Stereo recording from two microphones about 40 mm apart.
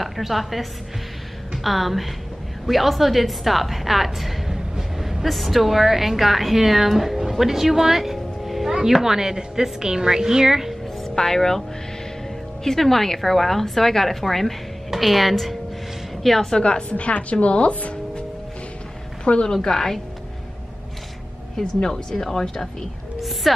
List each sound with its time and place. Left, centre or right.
0.0 s a woman's voice: centre
11.1 s speech: centre
12.6 s a woman's voice: centre
16.5 s a woman's voice: left
16.9 s a woman's voice: left
19.2 s a woman's voice: left
19.5 s speech: centre
21.8 s speech: centre
23.5 s music: centre